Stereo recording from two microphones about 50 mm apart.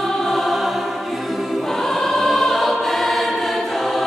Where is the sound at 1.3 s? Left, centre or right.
Centre.